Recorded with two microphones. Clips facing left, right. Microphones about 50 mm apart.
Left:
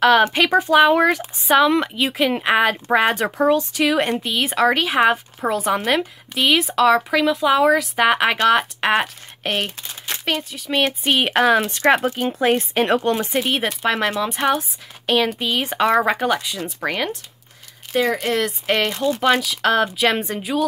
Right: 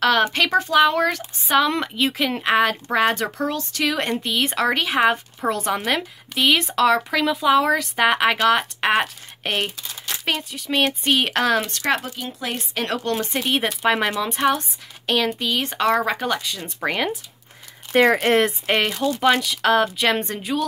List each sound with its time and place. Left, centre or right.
0.0 s speech: centre
1.5 s speech: centre
11.8 s speech: left; by 16.7 s centre
16.8 s speech: centre
18.2 s speech: right
18.7 s speech: centre